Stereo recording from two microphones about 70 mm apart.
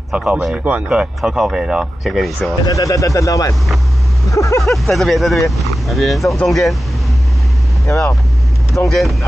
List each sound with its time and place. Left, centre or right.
0.1 s speech: centre
0.7 s speech: centre
2.6 s speech: left
4.6 s speech: centre
8.7 s speech: centre